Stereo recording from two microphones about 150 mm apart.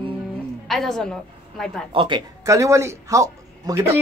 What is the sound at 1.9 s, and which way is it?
Speech, 35° right (ahead or behind).